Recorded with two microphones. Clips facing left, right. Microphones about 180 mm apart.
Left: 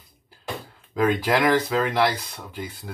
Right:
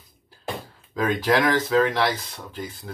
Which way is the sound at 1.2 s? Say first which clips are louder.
Even; 10° left (ahead or behind).